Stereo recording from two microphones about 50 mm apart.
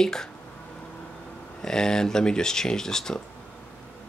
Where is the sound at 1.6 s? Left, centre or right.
Centre.